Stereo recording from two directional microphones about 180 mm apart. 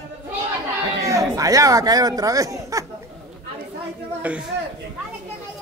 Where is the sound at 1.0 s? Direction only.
20° right (ahead or behind).